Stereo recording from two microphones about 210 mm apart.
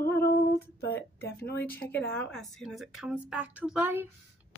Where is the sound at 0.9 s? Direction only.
10° left (ahead or behind).